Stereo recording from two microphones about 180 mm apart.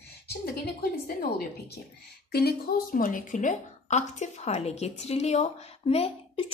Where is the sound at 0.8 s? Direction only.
55° left (ahead or behind).